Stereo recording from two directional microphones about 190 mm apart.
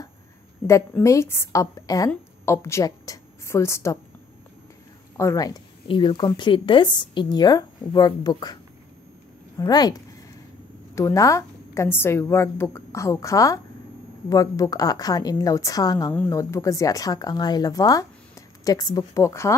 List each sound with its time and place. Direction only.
0.7 s a woman's voice: 15° left (ahead or behind)
5.1 s a woman's voice: 15° left (ahead or behind)
9.6 s a woman's voice: 20° left (ahead or behind)